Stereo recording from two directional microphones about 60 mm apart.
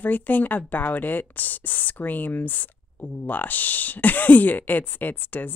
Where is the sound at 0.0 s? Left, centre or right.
Left.